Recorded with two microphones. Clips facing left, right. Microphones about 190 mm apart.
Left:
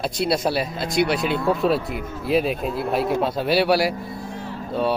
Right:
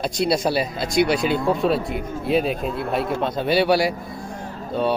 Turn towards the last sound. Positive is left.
turn(degrees=0)  # may be behind; listen again after turning